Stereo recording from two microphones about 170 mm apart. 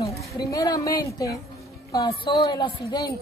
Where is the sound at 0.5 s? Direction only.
20° left (ahead or behind).